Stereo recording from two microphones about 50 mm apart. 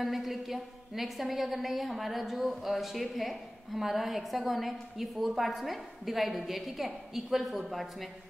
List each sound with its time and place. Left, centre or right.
0.0 s a woman's voice: centre